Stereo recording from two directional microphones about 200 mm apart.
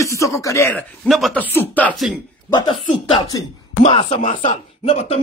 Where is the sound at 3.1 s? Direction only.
20° left (ahead or behind).